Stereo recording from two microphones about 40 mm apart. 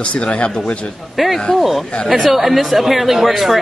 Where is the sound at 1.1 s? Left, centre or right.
Centre.